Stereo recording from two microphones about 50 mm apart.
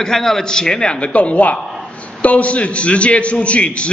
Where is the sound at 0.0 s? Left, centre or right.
Centre.